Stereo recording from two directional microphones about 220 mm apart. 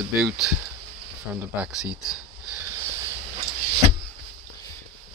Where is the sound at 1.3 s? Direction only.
5° right (ahead or behind).